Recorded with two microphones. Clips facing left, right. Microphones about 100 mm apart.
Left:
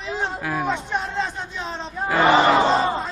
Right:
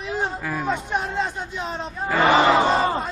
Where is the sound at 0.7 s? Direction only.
5° right (ahead or behind).